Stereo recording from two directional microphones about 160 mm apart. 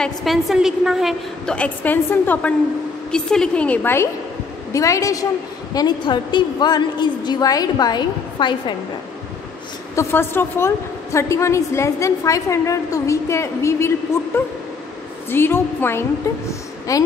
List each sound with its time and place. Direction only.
0.0 s a woman's voice: centre (ahead or behind); by 8.7 s 30° left (ahead or behind)
9.9 s a woman's voice: 15° left (ahead or behind)